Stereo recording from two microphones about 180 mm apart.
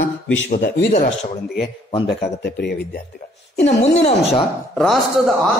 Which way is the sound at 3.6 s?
35° left (ahead or behind).